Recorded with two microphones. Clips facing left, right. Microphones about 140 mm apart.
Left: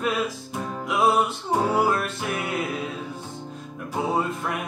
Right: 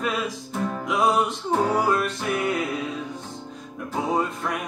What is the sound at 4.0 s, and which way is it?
Music, 5° left (ahead or behind).